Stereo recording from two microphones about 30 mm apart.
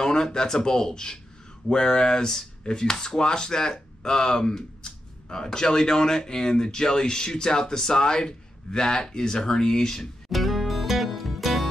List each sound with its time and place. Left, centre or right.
0.0 s speech: left
10.3 s music: centre